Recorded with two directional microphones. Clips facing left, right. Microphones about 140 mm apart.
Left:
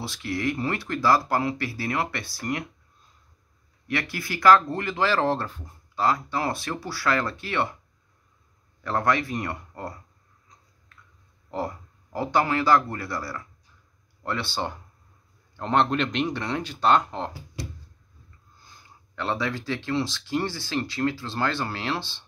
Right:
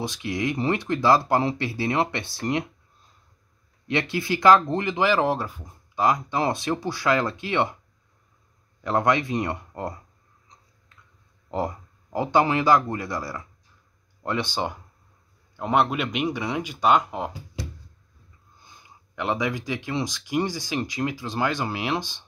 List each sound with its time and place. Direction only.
0.0 s speech: 20° right (ahead or behind)
3.8 s speech: 20° right (ahead or behind)
8.8 s speech: 20° right (ahead or behind)
11.5 s speech: 20° right (ahead or behind)
18.6 s speech: 20° right (ahead or behind)